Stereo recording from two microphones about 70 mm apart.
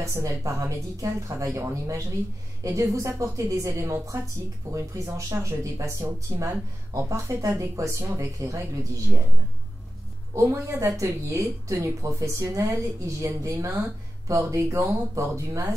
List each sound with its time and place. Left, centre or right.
0.0 s speech: right
10.3 s speech: right